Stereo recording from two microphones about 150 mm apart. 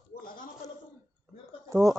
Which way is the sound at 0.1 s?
70° left (ahead or behind).